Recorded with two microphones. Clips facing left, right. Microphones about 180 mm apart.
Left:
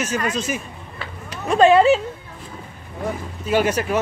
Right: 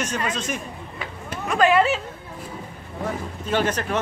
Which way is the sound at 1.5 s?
30° left (ahead or behind).